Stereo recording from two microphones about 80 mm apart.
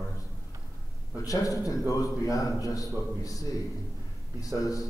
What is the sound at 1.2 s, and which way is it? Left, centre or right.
A man's voice, left.